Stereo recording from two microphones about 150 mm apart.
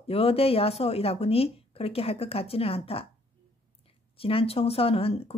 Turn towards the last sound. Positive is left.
turn(degrees=40)  # may be behind; listen again after turning